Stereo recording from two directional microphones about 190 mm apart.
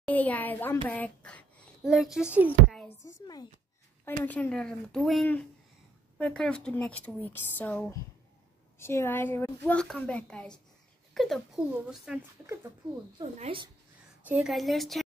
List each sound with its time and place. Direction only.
0.0 s a sound: 10° left (ahead or behind)
2.1 s speech: 5° right (ahead or behind)
3.1 s speech: 20° left (ahead or behind)
4.2 s a woman's voice: 10° left (ahead or behind)
13.2 s a woman's voice: 30° right (ahead or behind)
14.2 s speech: 5° right (ahead or behind)